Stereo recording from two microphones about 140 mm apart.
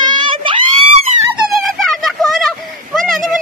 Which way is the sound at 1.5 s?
Centre (ahead or behind).